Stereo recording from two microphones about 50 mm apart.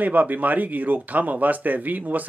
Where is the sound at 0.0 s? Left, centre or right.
Right.